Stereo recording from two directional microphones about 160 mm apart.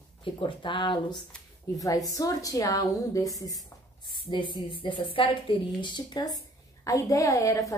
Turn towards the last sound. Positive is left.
turn(degrees=20)  # may be behind; listen again after turning